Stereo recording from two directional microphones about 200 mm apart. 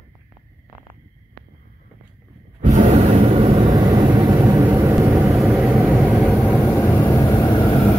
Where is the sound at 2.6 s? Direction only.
35° right (ahead or behind).